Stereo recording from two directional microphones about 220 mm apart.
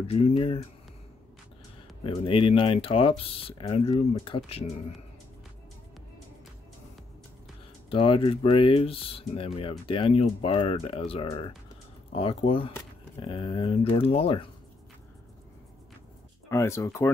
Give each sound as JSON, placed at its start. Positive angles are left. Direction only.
{"t": 0.0, "sound": "speech", "side_deg": 25}
{"t": 2.0, "sound": "speech", "side_deg": 25}
{"t": 7.9, "sound": "speech", "side_deg": 25}
{"t": 16.4, "sound": "speech", "side_deg": 10}